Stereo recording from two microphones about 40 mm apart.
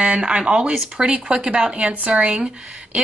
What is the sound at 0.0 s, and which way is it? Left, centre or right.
A woman's voice, right.